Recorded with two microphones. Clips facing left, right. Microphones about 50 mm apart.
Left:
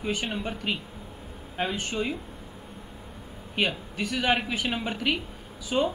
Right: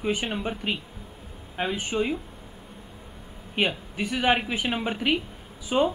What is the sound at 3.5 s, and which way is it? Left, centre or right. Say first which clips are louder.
Speech: right 1 dB; centre.